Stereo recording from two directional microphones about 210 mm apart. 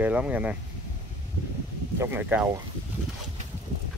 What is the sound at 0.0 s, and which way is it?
Speech, 5° right (ahead or behind).